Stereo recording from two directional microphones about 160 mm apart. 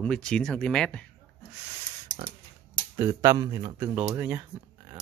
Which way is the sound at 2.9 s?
20° right (ahead or behind).